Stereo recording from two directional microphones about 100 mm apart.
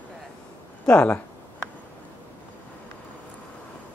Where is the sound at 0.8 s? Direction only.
10° left (ahead or behind).